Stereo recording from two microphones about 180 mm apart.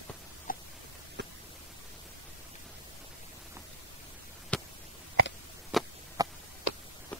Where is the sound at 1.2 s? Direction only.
70° right (ahead or behind).